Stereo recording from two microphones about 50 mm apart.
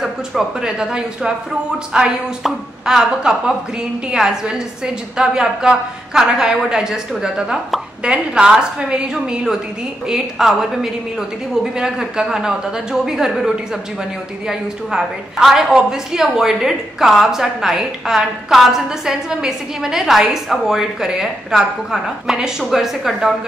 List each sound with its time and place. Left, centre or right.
0.0 s a woman's voice: centre
14.5 s a woman's voice: centre